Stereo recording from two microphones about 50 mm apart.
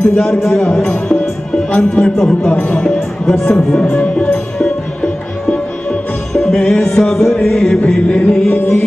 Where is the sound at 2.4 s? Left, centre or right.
Left.